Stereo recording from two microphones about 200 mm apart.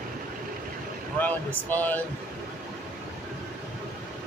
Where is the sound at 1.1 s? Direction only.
10° left (ahead or behind).